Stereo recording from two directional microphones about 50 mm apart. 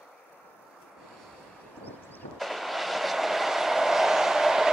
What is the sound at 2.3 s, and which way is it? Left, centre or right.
Vehicle, centre.